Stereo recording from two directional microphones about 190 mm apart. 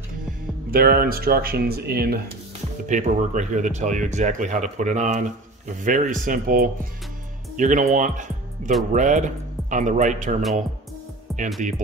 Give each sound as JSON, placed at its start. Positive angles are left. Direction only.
{"t": 0.7, "sound": "speech", "side_deg": -50}
{"t": 2.9, "sound": "speech", "side_deg": -40}
{"t": 11.3, "sound": "music", "side_deg": 0}